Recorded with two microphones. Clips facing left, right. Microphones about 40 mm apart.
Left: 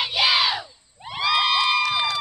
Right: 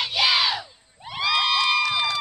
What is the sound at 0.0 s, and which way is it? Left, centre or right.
Crowd, centre.